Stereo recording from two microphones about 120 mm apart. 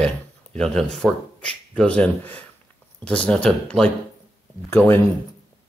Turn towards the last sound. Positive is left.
turn(degrees=15)  # may be behind; listen again after turning